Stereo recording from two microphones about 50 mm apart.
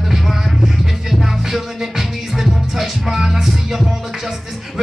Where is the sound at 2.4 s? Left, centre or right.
Centre.